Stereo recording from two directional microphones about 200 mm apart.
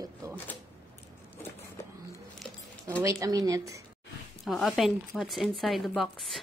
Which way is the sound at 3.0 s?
15° right (ahead or behind).